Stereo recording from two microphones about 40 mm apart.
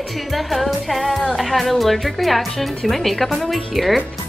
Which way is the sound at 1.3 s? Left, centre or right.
Centre.